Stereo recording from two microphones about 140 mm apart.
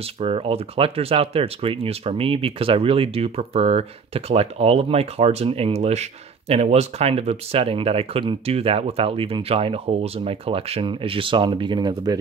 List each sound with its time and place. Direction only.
0.0 s speech: 45° right (ahead or behind); by 12.2 s 30° right (ahead or behind)